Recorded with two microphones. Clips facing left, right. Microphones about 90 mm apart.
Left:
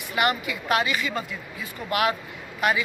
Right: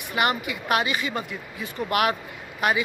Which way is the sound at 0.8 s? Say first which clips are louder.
Even; 30° right (ahead or behind).